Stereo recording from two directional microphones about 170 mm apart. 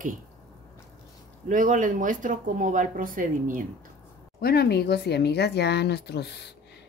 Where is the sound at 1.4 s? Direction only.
50° right (ahead or behind).